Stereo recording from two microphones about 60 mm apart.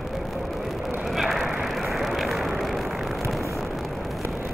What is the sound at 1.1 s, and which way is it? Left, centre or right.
Vehicle, centre.